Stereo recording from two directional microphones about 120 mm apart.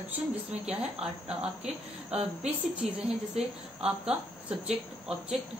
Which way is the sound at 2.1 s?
60° right (ahead or behind).